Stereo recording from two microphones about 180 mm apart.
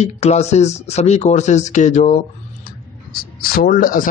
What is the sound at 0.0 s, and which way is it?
Speech, 35° left (ahead or behind).